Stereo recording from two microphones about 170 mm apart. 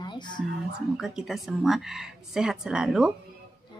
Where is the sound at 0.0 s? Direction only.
25° left (ahead or behind).